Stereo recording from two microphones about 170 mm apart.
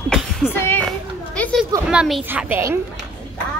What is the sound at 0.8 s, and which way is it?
Children playing, 5° left (ahead or behind).